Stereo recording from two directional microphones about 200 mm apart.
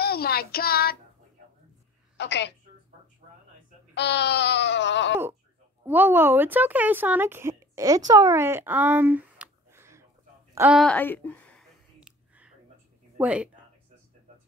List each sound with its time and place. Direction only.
0.0 s child singing: 50° left (ahead or behind)
2.1 s a woman's voice: 60° left (ahead or behind)
3.9 s baby cry: 60° left (ahead or behind)
5.9 s speech: 10° right (ahead or behind)
10.5 s a sound: 10° right (ahead or behind)
10.8 s speech: 5° left (ahead or behind)
12.0 s a sound: 5° right (ahead or behind)
13.2 s speech: 5° right (ahead or behind)